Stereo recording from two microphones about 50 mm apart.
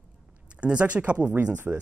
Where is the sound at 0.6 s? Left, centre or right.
Right.